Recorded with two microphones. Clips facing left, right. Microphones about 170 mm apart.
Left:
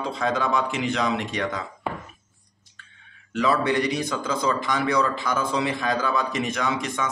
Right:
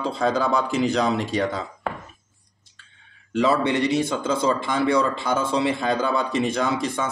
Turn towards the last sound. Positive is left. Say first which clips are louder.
# right 3 dB
turn(degrees=-30)  # may be behind; listen again after turning